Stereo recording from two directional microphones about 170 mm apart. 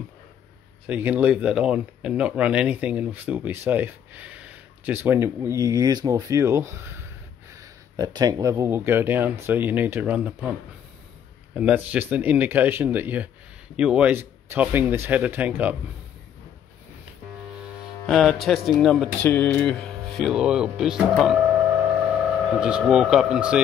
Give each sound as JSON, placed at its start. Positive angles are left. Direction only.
{"t": 0.8, "sound": "speech", "side_deg": -10}
{"t": 11.5, "sound": "speech", "side_deg": -10}
{"t": 18.0, "sound": "speech", "side_deg": 0}
{"t": 19.2, "sound": "speech", "side_deg": 10}
{"t": 22.6, "sound": "speech", "side_deg": -5}